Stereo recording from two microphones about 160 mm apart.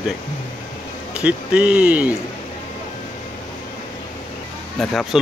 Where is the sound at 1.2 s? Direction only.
5° right (ahead or behind).